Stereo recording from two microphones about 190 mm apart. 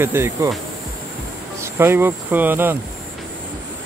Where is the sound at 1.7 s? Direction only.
10° right (ahead or behind).